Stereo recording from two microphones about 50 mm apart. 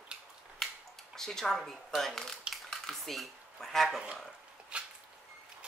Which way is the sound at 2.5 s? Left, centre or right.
Centre.